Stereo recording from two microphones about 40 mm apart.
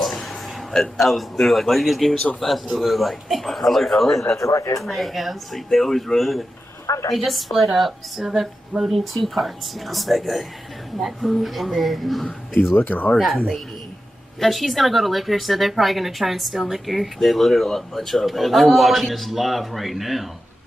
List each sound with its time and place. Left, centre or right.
0.7 s speech: centre
8.3 s a sound: centre
9.2 s speech: centre
12.7 s speech: left
13.1 s speech: centre
14.4 s speech: centre